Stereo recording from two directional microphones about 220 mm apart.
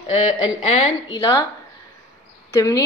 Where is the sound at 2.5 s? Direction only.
15° left (ahead or behind).